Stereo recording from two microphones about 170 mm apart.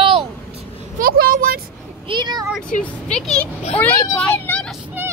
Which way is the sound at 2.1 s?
25° right (ahead or behind).